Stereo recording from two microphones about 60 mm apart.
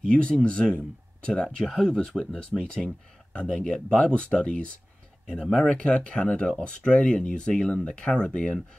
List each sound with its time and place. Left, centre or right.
0.0 s speech: centre
1.7 s speech: centre
2.0 s speech: centre
5.7 s speech: centre